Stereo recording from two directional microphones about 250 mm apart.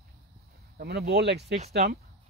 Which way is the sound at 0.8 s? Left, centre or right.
Right.